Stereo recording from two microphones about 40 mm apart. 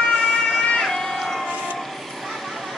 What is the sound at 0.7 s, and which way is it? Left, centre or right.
Run, centre.